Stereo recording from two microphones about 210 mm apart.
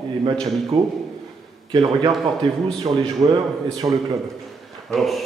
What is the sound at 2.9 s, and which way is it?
A man's voice, 20° right (ahead or behind).